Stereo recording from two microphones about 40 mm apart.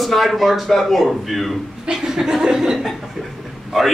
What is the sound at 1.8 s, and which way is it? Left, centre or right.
Speech, centre.